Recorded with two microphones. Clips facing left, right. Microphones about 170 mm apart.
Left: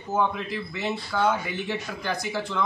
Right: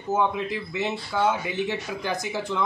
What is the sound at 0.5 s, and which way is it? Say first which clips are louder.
Speech: right 1 dB; 15° right (ahead or behind).